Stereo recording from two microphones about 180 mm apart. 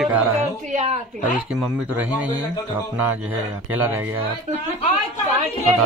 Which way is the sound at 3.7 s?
10° right (ahead or behind).